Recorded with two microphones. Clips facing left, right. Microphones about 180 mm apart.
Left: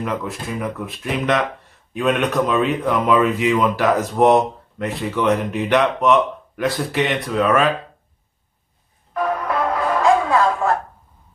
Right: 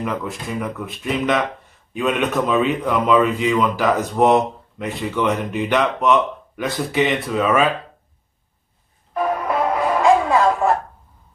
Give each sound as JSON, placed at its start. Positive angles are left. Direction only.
{"t": 0.0, "sound": "speech", "side_deg": 0}
{"t": 9.1, "sound": "music", "side_deg": -20}
{"t": 10.3, "sound": "a sound", "side_deg": -20}